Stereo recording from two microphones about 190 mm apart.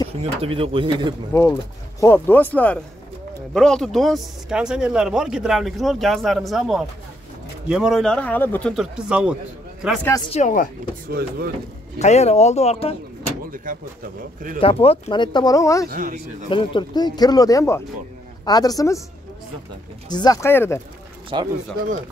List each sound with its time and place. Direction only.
0.2 s speech: 30° right (ahead or behind)
1.3 s speech: 15° left (ahead or behind); by 9.4 s 5° right (ahead or behind)
10.3 s speech: 40° left (ahead or behind)
11.1 s a man's voice: 50° right (ahead or behind)
12.0 s speech: 35° left (ahead or behind)
13.5 s a man's voice: 45° right (ahead or behind)
14.6 s speech: 30° left (ahead or behind)
15.9 s a man's voice: 45° right (ahead or behind)
16.4 s speech: 25° left (ahead or behind)
20.1 s speech: 20° left (ahead or behind)
21.3 s speech: 25° right (ahead or behind)